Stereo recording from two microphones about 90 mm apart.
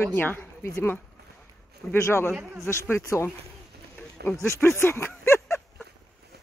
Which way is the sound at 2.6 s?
30° left (ahead or behind).